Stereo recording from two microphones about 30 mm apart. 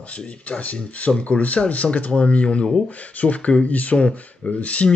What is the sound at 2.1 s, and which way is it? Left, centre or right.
Speech, left.